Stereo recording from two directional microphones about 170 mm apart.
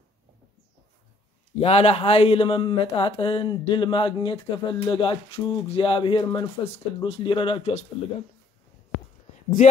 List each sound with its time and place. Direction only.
1.6 s speech: 35° left (ahead or behind)